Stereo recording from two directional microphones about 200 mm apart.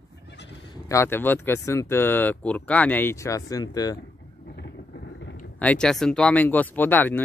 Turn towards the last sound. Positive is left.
turn(degrees=10)  # may be behind; listen again after turning